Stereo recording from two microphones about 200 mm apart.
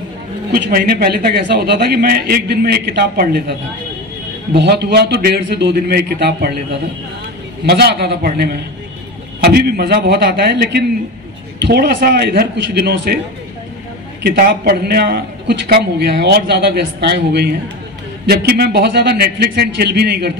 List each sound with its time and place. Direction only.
0.5 s a man's voice: 50° right (ahead or behind)
4.6 s a man's voice: 55° right (ahead or behind)
7.6 s a man's voice: 55° right (ahead or behind)
14.2 s a man's voice: 50° right (ahead or behind)